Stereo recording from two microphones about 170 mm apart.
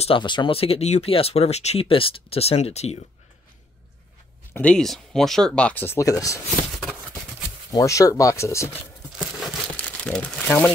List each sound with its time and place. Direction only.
0.0 s speech: 30° left (ahead or behind)
4.6 s speech: 5° left (ahead or behind)
7.7 s speech: 20° left (ahead or behind)
9.8 s speech: 5° left (ahead or behind)